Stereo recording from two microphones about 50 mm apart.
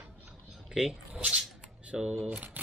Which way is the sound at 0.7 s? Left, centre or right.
Centre.